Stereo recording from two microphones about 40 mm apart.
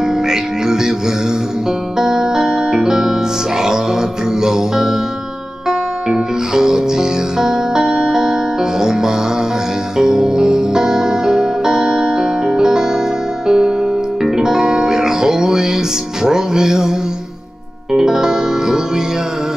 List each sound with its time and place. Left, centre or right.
0.0 s music: centre
17.9 s music: centre